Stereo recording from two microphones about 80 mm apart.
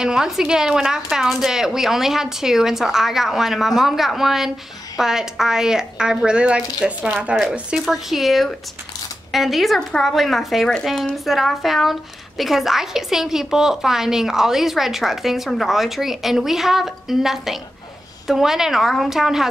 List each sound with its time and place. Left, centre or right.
0.0 s speech: centre
7.8 s speech: centre